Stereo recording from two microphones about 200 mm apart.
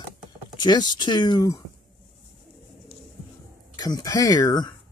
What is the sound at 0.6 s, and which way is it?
Speech, 20° left (ahead or behind).